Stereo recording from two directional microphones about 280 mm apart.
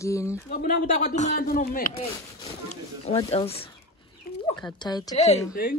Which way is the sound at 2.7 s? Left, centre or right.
Left.